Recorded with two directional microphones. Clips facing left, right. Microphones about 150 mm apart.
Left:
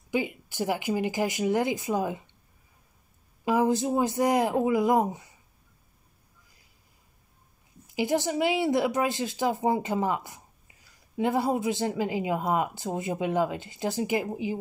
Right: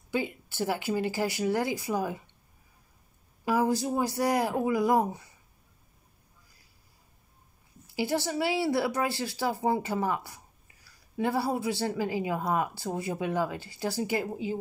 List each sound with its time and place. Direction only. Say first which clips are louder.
0.1 s speech: left 2 dB; 15° left (ahead or behind)
3.4 s speech: left 2 dB; 20° left (ahead or behind)
7.8 s speech: left 3 dB; 20° left (ahead or behind)